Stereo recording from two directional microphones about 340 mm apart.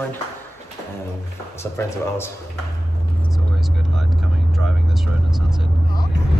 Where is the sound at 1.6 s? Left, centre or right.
Centre.